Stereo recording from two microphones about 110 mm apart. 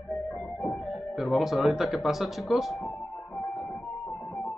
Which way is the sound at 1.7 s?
5° right (ahead or behind).